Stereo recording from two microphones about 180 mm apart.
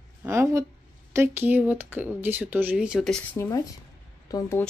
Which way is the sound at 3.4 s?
20° left (ahead or behind).